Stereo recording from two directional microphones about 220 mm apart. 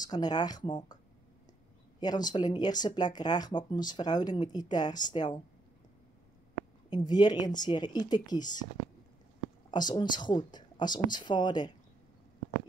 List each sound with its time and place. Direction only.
0.0 s speech: 20° left (ahead or behind)
2.0 s speech: 20° left (ahead or behind)
6.9 s speech: 20° left (ahead or behind)
9.7 s speech: 20° left (ahead or behind)